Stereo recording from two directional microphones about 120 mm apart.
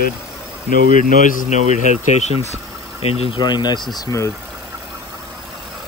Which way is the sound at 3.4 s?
35° left (ahead or behind).